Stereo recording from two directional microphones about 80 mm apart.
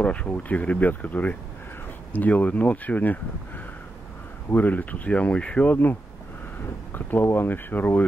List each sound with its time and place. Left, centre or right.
0.0 s speech: centre